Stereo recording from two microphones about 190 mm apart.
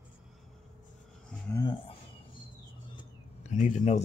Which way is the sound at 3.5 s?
40° left (ahead or behind).